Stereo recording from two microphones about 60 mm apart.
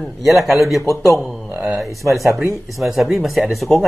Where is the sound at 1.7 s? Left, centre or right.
Centre.